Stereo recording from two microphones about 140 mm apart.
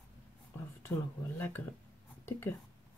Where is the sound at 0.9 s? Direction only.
15° left (ahead or behind).